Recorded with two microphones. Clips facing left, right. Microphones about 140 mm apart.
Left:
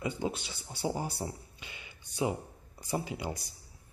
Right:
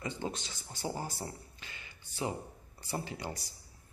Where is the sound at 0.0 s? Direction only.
10° left (ahead or behind).